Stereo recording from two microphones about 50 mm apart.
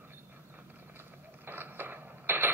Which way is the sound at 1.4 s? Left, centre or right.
Right.